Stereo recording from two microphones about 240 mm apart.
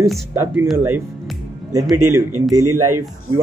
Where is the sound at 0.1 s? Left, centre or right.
Centre.